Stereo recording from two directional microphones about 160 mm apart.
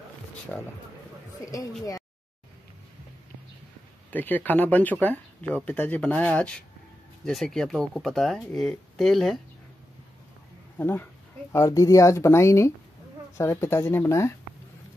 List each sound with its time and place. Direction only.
0.5 s speech: 10° left (ahead or behind)
1.4 s speech: 20° left (ahead or behind)
4.1 s speech: 10° left (ahead or behind)
10.8 s speech: 10° left (ahead or behind)